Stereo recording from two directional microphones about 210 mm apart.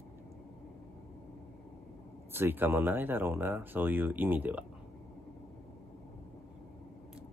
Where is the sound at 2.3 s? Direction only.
10° right (ahead or behind).